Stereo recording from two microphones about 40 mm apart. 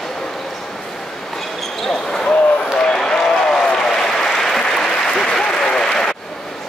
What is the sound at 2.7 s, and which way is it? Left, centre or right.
Applause, centre.